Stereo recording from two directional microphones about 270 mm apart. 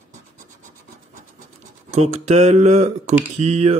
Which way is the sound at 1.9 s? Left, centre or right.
Right.